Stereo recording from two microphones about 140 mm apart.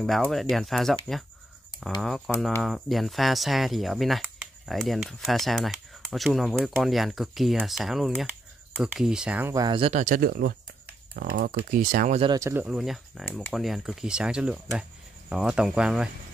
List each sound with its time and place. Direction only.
0.0 s speech: centre (ahead or behind)
2.0 s speech: centre (ahead or behind)
9.5 s speech: 25° right (ahead or behind)
9.8 s speech: 45° right (ahead or behind)
10.0 s speech: 80° right
11.7 s speech: 80° right
12.4 s speech: 20° right (ahead or behind)
12.6 s speech: centre (ahead or behind)